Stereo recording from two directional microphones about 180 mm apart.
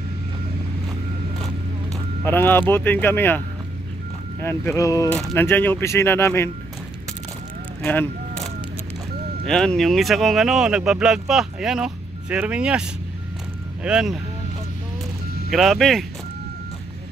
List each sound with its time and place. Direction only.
2.2 s speech: 10° left (ahead or behind)
7.8 s a sound: 10° left (ahead or behind)
9.5 s speech: 5° left (ahead or behind)
13.8 s speech: 5° right (ahead or behind)
15.5 s speech: centre (ahead or behind)